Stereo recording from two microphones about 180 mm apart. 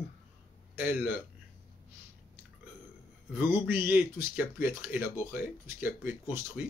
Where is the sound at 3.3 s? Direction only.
10° right (ahead or behind).